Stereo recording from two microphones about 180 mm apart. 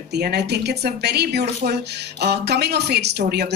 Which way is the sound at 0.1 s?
65° right (ahead or behind).